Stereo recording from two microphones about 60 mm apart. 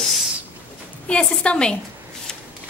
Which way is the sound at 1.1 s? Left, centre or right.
Centre.